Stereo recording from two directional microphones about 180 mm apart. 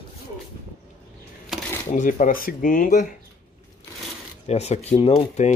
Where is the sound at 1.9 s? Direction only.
45° left (ahead or behind).